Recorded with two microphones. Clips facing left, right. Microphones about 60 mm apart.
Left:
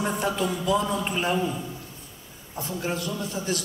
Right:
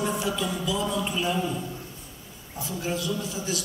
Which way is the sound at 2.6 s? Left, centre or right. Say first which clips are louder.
Left 1 dB; left.